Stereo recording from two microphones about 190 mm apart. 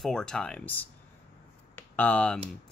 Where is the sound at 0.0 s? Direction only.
5° left (ahead or behind).